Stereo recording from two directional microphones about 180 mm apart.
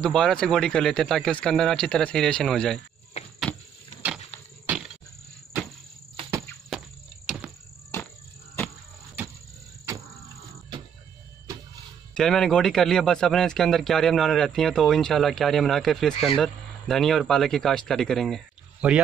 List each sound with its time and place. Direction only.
0.0 s a man's voice: 5° left (ahead or behind)
3.2 s insect: 35° left (ahead or behind)
4.6 s insect: centre (ahead or behind)
7.2 s a sound: centre (ahead or behind)
7.9 s cricket: 15° left (ahead or behind)
9.9 s a sound: 15° right (ahead or behind)
12.1 s a man's voice: 5° left (ahead or behind)